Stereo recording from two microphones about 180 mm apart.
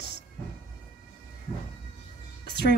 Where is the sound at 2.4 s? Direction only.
65° left (ahead or behind).